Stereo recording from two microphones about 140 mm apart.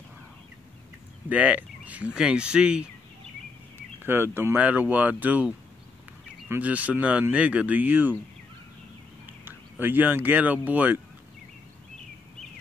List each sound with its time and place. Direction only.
1.3 s speech: 10° right (ahead or behind)
6.5 s speech: 10° right (ahead or behind)
9.2 s speech: 15° right (ahead or behind)